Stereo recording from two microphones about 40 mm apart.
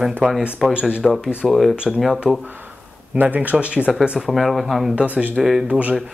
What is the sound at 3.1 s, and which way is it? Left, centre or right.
Speech, right.